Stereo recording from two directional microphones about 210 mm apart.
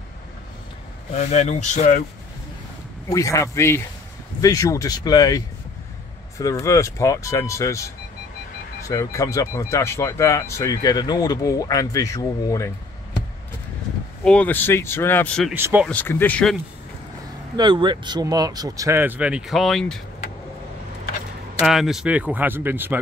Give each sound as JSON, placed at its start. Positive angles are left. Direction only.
{"t": 1.1, "sound": "speech", "side_deg": 30}
{"t": 3.1, "sound": "speech", "side_deg": 15}
{"t": 14.2, "sound": "speech", "side_deg": 5}
{"t": 15.5, "sound": "speech", "side_deg": -10}
{"t": 15.9, "sound": "speech", "side_deg": 10}
{"t": 17.6, "sound": "speech", "side_deg": -20}
{"t": 21.6, "sound": "speech", "side_deg": 0}